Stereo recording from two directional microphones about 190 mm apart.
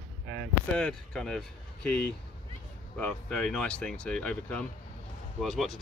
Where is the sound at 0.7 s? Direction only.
5° left (ahead or behind).